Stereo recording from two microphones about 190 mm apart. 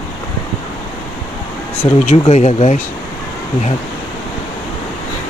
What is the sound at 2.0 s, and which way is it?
Speech, 35° left (ahead or behind).